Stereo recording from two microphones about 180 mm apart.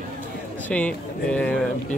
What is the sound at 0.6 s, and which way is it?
Speech, 5° left (ahead or behind).